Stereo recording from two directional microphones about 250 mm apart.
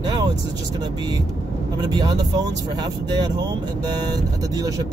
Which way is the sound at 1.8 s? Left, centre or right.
Centre.